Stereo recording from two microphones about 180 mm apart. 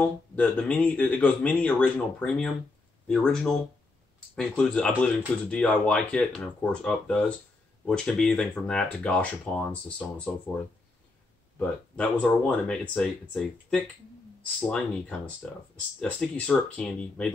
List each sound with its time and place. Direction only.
0.0 s speech: 5° left (ahead or behind)
11.5 s speech: 5° left (ahead or behind)